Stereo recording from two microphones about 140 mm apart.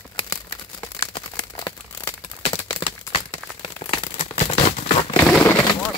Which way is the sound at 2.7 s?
45° left (ahead or behind).